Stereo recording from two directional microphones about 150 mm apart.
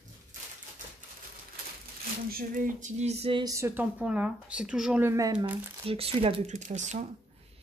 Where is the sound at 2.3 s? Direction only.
65° right (ahead or behind); by 3.4 s 40° right (ahead or behind).